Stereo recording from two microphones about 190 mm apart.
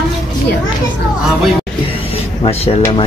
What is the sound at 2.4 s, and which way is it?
Speech, 30° left (ahead or behind).